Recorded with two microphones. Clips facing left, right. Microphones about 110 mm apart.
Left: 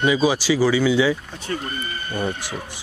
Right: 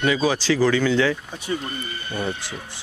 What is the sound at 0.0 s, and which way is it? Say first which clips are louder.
Speech: left 2 dB; 15° left (ahead or behind).